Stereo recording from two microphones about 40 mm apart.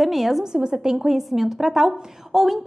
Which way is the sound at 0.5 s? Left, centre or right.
Centre.